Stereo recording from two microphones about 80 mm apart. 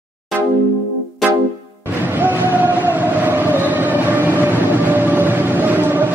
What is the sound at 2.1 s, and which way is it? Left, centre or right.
Train, right.